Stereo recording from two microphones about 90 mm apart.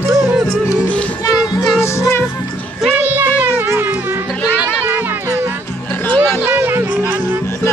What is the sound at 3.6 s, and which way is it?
Music, 25° right (ahead or behind).